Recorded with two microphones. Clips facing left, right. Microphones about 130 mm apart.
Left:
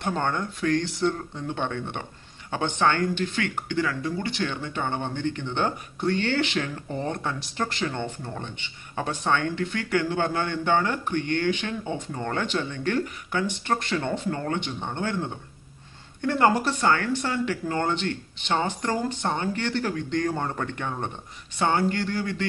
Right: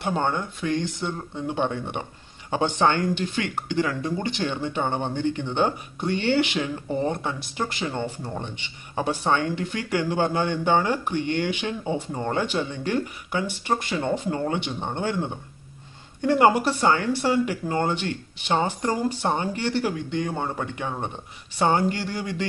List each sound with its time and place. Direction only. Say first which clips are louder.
0.0 s speech: right 2 dB; 10° right (ahead or behind)
7.3 s speech: even; 5° right (ahead or behind)